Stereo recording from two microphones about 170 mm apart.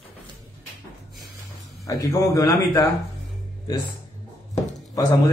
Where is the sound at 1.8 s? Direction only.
20° left (ahead or behind).